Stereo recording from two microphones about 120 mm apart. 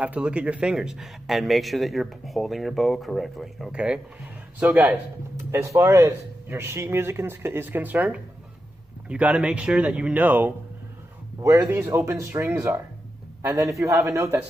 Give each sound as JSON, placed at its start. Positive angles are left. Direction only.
{"t": 0.0, "sound": "a man's voice", "side_deg": -10}